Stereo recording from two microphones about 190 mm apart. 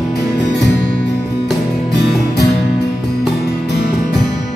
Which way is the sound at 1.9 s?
60° left (ahead or behind).